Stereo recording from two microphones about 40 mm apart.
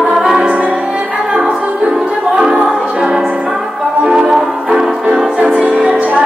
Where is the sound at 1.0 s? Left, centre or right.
Right.